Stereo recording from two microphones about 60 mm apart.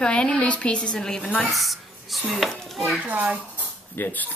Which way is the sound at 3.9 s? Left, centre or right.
Left.